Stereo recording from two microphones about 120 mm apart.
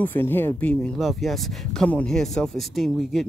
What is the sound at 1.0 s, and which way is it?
Speech, centre (ahead or behind).